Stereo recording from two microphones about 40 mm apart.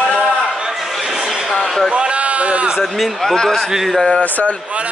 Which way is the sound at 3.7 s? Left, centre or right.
Centre.